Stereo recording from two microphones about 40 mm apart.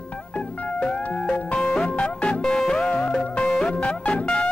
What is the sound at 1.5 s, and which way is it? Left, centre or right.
Music, left.